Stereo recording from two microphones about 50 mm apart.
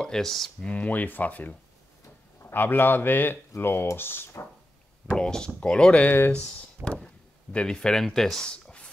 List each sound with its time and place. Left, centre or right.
0.0 s speech: centre
0.6 s a man's voice: left
5.1 s speech: centre
6.8 s a sound: centre
7.5 s speech: centre
8.5 s a sound: centre